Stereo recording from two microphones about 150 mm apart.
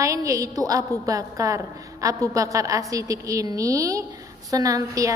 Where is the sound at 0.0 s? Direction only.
20° right (ahead or behind).